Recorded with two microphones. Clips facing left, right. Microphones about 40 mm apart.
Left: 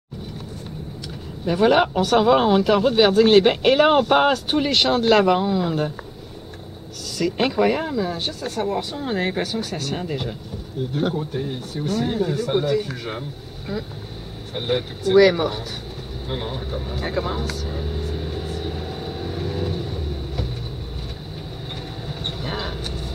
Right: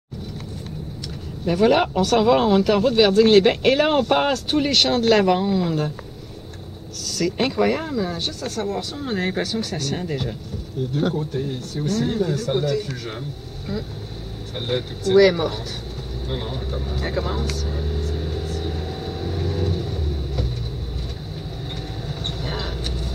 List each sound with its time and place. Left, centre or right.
1.6 s speech: centre
7.1 s speech: centre
14.5 s speech: centre
16.3 s vehicle: centre
22.0 s vehicle: centre